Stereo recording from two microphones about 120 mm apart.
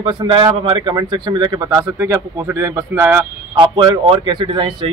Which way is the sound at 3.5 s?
40° right (ahead or behind).